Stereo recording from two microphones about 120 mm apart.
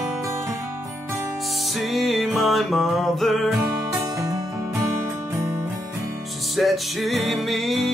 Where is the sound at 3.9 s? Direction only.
30° right (ahead or behind).